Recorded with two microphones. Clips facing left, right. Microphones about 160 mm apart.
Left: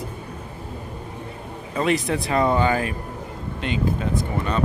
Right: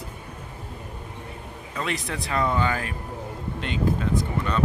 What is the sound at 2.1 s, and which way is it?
Speech, 25° left (ahead or behind).